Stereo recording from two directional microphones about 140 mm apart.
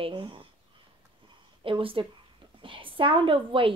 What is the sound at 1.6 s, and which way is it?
A woman's voice, 40° right (ahead or behind).